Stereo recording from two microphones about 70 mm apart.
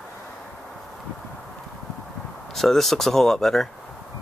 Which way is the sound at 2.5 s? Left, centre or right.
Centre.